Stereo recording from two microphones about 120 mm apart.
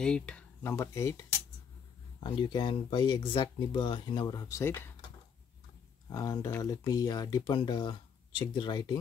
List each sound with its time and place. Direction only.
0.0 s speech: 10° left (ahead or behind)
0.7 s speech: 25° left (ahead or behind)
2.1 s speech: 40° left (ahead or behind)
4.3 s speech: 30° left (ahead or behind)
6.1 s speech: 30° left (ahead or behind)